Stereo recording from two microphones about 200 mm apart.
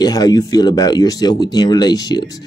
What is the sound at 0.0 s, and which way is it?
Speech, 20° left (ahead or behind).